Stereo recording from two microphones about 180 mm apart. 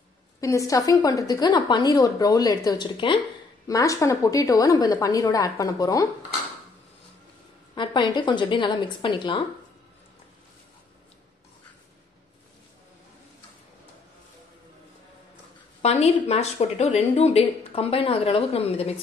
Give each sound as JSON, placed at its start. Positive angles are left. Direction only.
{"t": 0.4, "sound": "a woman's voice", "side_deg": 15}
{"t": 7.7, "sound": "a woman's voice", "side_deg": 25}
{"t": 15.8, "sound": "speech", "side_deg": 35}